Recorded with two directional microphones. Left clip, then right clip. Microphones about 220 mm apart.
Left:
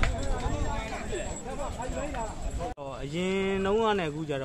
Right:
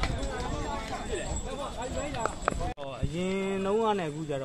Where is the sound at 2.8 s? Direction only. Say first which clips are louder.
Left 3 dB; 5° left (ahead or behind).